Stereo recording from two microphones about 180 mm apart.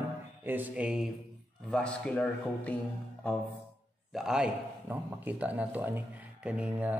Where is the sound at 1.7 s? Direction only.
5° left (ahead or behind).